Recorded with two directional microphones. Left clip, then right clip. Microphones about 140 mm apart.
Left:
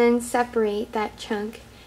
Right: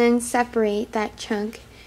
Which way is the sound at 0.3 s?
25° right (ahead or behind).